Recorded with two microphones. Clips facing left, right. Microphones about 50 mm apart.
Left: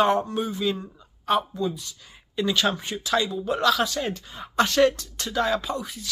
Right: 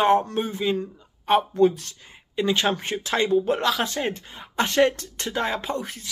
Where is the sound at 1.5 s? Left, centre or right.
Right.